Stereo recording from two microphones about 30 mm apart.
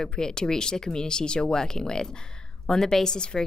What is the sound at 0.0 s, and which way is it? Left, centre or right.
A woman's voice, left.